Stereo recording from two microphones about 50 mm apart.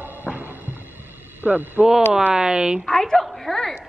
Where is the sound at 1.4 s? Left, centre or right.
Right.